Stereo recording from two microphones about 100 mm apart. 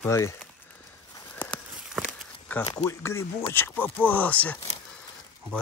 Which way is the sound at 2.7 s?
30° left (ahead or behind).